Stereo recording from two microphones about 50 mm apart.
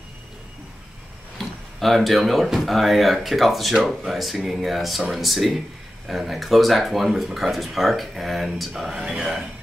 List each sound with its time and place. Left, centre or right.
1.4 s speech: centre
8.9 s speech: centre